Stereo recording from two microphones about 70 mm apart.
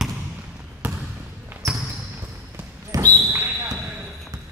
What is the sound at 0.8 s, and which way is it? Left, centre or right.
Trickle, right.